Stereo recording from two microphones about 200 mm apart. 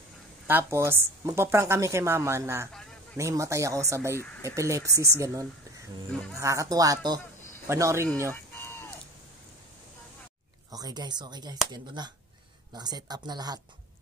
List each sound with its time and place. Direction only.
0.5 s speech: 10° right (ahead or behind)
8.3 s a sound: 10° left (ahead or behind)
10.7 s speech: 20° right (ahead or behind)